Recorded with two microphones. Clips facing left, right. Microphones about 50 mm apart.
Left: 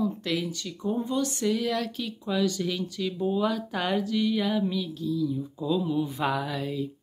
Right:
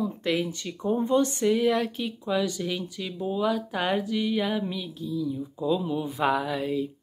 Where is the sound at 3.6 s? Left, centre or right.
Centre.